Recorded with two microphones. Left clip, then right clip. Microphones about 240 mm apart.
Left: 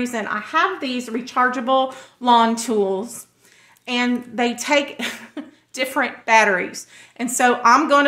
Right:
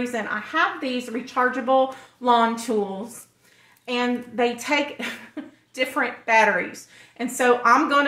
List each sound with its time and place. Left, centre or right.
0.0 s speech: left
3.8 s speech: left